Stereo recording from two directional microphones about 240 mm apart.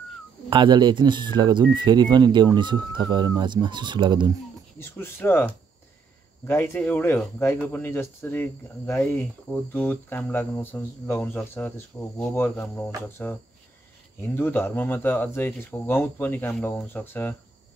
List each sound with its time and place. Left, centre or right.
0.5 s speech: centre
4.7 s speech: centre